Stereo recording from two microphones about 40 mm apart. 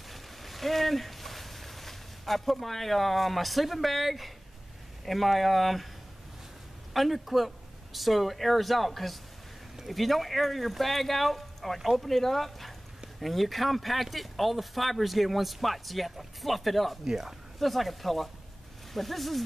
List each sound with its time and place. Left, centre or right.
0.1 s a sound: centre
5.0 s speech: centre
6.9 s speech: centre
17.6 s speech: centre